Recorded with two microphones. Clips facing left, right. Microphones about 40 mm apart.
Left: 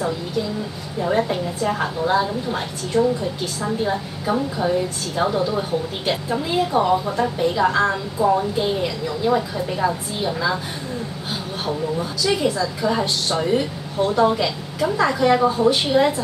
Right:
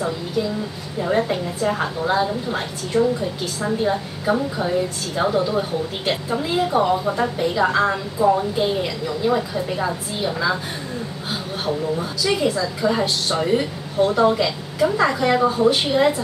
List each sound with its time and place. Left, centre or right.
1.0 s a woman's voice: centre
11.6 s a woman's voice: centre